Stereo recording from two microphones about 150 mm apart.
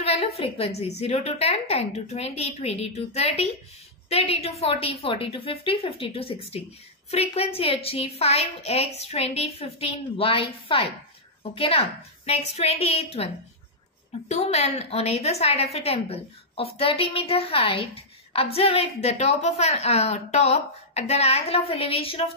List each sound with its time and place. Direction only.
0.0 s a woman's voice: 40° left (ahead or behind)
14.3 s a woman's voice: 45° left (ahead or behind)